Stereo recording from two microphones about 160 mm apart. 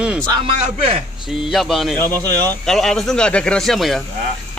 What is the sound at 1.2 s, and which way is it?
Speech, centre (ahead or behind).